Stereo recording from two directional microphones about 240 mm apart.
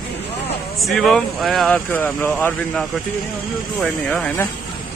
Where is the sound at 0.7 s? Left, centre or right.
Centre.